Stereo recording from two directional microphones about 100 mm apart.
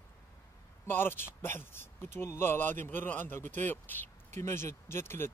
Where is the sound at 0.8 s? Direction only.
20° left (ahead or behind).